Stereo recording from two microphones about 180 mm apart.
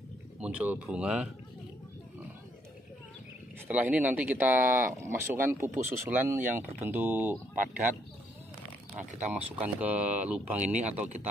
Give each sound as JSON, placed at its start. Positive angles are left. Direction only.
{"t": 0.4, "sound": "speech", "side_deg": -5}
{"t": 3.6, "sound": "speech", "side_deg": -10}
{"t": 9.8, "sound": "speech", "side_deg": -10}